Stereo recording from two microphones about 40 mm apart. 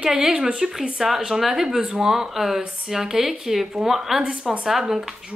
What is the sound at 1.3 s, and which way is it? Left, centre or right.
Speech, centre.